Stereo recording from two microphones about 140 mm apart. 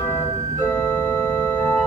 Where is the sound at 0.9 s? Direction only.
10° left (ahead or behind).